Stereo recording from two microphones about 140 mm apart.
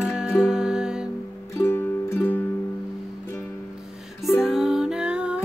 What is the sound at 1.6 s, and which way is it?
Music, 15° left (ahead or behind).